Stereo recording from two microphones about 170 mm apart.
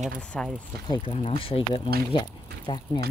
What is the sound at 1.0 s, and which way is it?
Speech, 35° left (ahead or behind).